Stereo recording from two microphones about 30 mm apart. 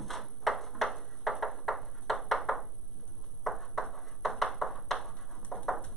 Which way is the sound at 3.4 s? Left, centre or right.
Centre.